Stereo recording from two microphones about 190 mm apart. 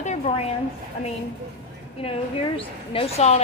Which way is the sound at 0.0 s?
35° left (ahead or behind).